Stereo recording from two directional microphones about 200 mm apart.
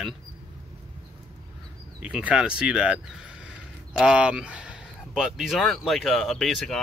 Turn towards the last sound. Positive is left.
turn(degrees=0)  # may be behind; listen again after turning